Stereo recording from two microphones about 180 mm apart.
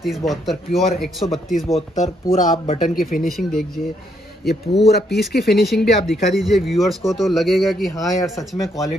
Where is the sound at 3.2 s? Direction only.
Centre (ahead or behind).